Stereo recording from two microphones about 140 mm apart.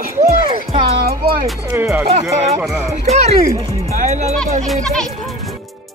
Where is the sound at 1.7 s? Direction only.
15° right (ahead or behind).